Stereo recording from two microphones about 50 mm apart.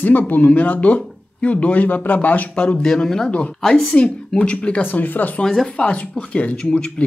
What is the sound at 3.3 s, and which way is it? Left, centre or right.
Speech, left.